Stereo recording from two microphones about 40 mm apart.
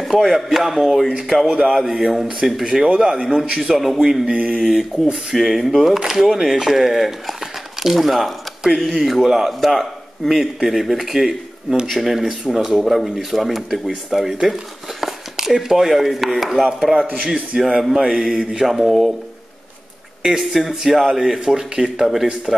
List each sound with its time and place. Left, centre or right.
0.0 s speech: centre
2.6 s a man's voice: centre
3.7 s speech: centre
4.4 s a sound: centre
5.1 s a man's voice: centre
18.0 s mantra: centre
18.6 s speech: centre
20.2 s a man's voice: centre
21.9 s speech: centre